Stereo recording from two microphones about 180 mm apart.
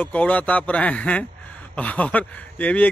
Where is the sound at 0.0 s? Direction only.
5° left (ahead or behind).